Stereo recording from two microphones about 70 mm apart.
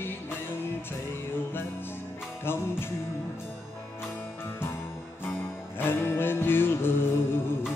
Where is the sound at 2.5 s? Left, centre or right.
Left.